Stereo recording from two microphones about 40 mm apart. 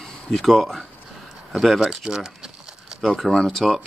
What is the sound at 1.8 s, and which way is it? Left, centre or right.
Speech, centre.